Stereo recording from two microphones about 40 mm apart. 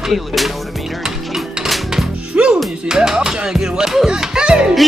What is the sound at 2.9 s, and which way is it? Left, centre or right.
Speech, centre.